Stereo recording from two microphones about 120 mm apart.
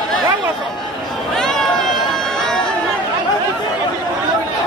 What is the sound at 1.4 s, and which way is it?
Run, 5° left (ahead or behind).